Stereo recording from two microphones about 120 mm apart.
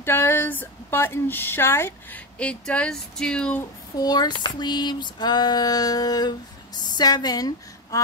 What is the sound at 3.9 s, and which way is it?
Female singing, 35° left (ahead or behind).